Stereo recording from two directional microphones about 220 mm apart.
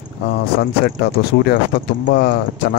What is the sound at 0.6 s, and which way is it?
Speech, 45° left (ahead or behind).